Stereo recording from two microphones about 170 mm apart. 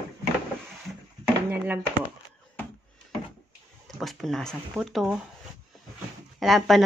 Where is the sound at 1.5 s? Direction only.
10° right (ahead or behind).